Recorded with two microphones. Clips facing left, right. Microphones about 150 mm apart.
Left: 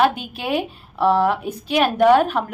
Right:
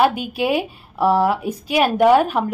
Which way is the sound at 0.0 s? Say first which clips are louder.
Right 2 dB; 10° right (ahead or behind).